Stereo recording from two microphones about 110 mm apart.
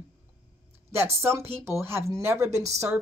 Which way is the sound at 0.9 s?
20° right (ahead or behind).